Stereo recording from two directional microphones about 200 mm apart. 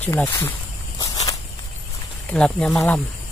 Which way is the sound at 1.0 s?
20° left (ahead or behind).